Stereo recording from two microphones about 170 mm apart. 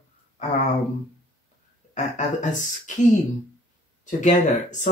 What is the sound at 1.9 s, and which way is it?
Speech, 45° left (ahead or behind).